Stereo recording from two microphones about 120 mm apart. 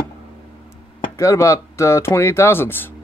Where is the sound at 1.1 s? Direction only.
25° left (ahead or behind).